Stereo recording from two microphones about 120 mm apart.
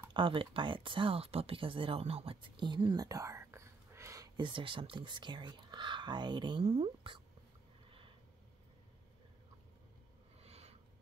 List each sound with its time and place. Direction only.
0.1 s speech: 45° right (ahead or behind); by 4.3 s 25° right (ahead or behind)
4.4 s speech: 45° right (ahead or behind)
6.6 s speech: 60° right (ahead or behind)
10.4 s a sound: 60° right (ahead or behind)